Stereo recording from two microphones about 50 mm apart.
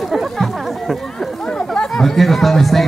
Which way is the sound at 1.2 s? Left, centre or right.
Centre.